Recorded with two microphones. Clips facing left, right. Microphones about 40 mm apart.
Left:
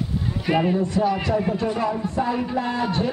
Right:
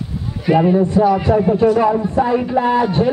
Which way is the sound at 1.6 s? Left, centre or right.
Right.